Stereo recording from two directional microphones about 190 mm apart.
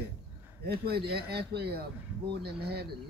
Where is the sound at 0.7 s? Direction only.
55° right (ahead or behind).